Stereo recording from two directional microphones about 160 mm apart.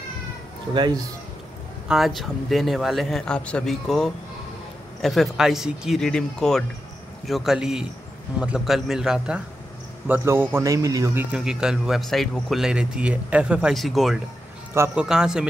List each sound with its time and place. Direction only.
0.7 s a man's voice: 25° right (ahead or behind)
1.9 s a man's voice: centre (ahead or behind); by 11.2 s 20° right (ahead or behind)
11.3 s speech: 5° right (ahead or behind)
14.7 s a man's voice: 15° right (ahead or behind)
15.0 s speech: 5° right (ahead or behind)